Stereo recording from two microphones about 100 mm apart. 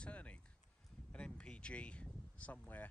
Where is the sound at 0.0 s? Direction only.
15° left (ahead or behind).